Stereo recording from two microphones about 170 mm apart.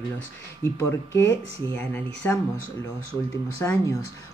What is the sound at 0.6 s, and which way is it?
Speech, 15° left (ahead or behind).